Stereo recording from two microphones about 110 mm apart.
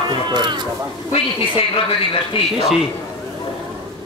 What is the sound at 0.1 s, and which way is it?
Speech, 45° right (ahead or behind).